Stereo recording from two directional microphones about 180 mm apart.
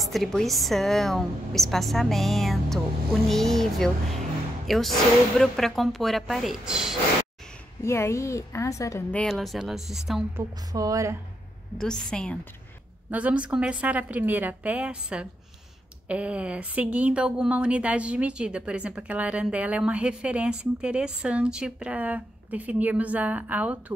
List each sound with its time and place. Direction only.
0.0 s a woman's voice: centre (ahead or behind)
7.8 s a woman's voice: 15° left (ahead or behind)
9.2 s a woman's voice: centre (ahead or behind)
10.3 s a woman's voice: 20° right (ahead or behind)
11.8 s a woman's voice: 5° left (ahead or behind)
13.1 s a woman's voice: 5° right (ahead or behind)